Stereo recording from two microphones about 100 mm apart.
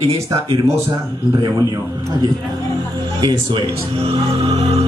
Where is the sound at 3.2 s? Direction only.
45° right (ahead or behind).